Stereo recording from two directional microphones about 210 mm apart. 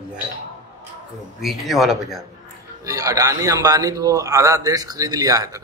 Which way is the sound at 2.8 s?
15° right (ahead or behind).